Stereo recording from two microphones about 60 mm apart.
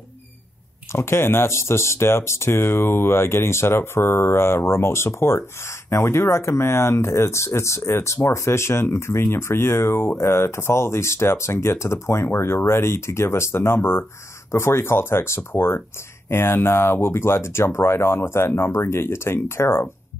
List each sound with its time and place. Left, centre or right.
0.9 s speech: left